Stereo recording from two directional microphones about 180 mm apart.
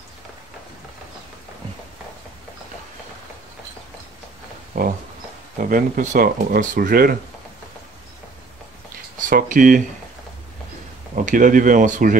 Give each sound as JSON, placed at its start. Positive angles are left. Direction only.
{"t": 4.7, "sound": "speech", "side_deg": -55}
{"t": 9.3, "sound": "speech", "side_deg": -50}
{"t": 11.2, "sound": "speech", "side_deg": -45}